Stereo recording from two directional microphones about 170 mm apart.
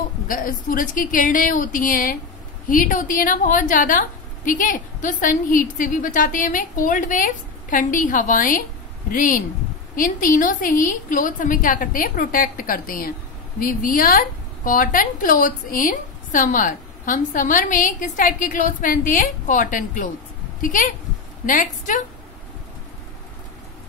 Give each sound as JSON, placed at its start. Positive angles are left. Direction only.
{"t": 0.3, "sound": "a woman's voice", "side_deg": 55}